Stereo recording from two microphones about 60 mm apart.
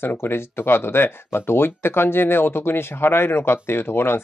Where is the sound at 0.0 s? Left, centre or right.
Left.